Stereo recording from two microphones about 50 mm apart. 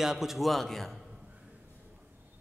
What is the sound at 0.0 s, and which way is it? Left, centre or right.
Speech, centre.